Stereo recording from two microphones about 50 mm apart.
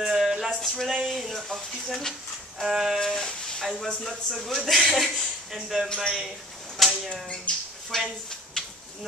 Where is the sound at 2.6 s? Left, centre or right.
Centre.